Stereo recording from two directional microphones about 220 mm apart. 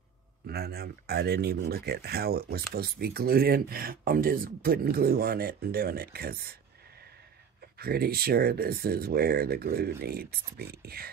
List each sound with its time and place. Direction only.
0.5 s speech: 45° right (ahead or behind)
7.8 s speech: 45° right (ahead or behind)